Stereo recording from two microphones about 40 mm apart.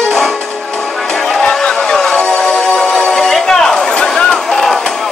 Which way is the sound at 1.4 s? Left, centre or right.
Centre.